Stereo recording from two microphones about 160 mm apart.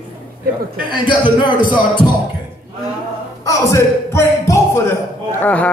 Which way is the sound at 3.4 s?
15° left (ahead or behind).